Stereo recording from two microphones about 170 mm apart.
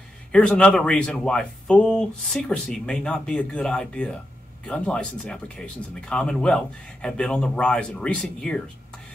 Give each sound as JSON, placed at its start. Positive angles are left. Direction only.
{"t": 0.3, "sound": "speech", "side_deg": 5}